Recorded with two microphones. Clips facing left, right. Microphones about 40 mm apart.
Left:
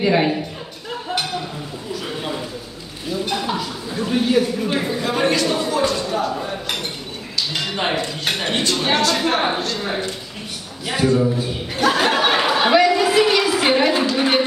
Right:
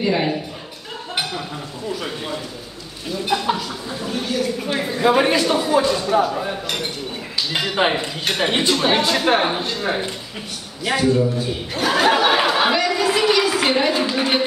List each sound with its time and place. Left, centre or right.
0.0 s speech: centre
3.3 s speech: centre
4.1 s speech: centre
4.6 s speech: centre
5.0 s speech: centre
5.4 s speech: centre
7.6 s speech: centre
11.0 s chuckle: centre
14.1 s speech: centre